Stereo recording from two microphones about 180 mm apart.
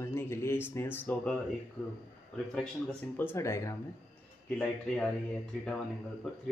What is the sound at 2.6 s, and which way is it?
Speech, 10° left (ahead or behind).